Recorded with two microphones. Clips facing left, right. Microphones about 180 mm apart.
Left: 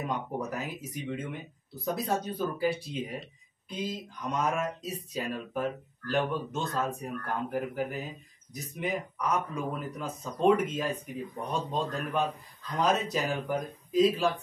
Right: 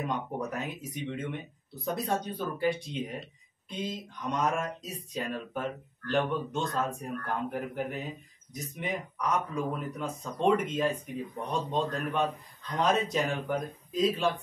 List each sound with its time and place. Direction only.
0.0 s speech: 5° left (ahead or behind)